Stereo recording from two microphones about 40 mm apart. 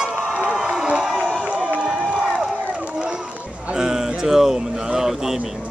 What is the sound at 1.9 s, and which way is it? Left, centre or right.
Crowd, centre.